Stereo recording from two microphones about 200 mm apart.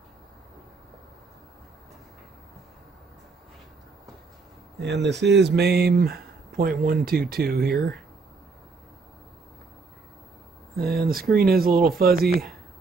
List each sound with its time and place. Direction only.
4.7 s speech: 60° right (ahead or behind)
10.8 s speech: 50° right (ahead or behind)